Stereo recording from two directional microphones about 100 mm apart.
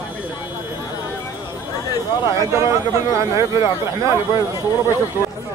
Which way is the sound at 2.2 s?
30° right (ahead or behind).